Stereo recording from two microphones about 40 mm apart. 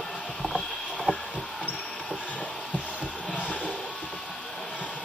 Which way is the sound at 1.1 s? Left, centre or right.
Left.